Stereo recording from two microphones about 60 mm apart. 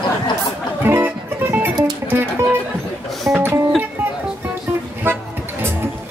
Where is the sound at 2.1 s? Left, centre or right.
Right.